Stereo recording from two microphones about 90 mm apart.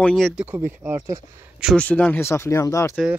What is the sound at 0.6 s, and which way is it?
Speech, 25° right (ahead or behind).